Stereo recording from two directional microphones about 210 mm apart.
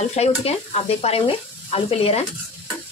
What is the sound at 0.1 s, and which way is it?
Sizzle, 30° left (ahead or behind).